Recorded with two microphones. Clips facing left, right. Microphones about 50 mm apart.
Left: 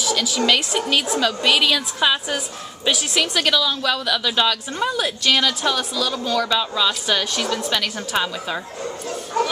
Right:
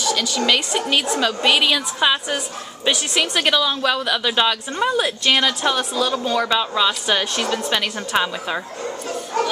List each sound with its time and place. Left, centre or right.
0.0 s a woman's voice: centre